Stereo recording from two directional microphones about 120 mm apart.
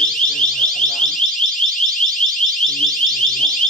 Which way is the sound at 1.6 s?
60° left (ahead or behind).